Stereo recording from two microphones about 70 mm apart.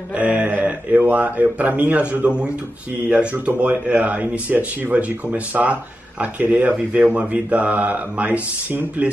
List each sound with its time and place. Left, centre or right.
0.1 s speech: centre